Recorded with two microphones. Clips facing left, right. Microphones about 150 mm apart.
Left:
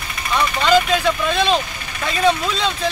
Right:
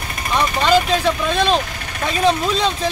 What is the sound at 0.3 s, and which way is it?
Speech, 35° right (ahead or behind).